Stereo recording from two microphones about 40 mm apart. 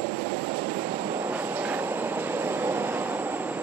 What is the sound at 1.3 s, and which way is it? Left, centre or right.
Train, right.